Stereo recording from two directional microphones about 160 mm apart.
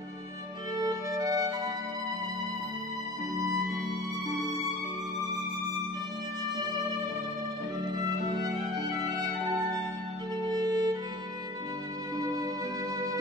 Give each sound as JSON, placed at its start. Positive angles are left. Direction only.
{"t": 0.7, "sound": "music", "side_deg": -25}
{"t": 8.0, "sound": "music", "side_deg": -25}
{"t": 10.5, "sound": "music", "side_deg": -25}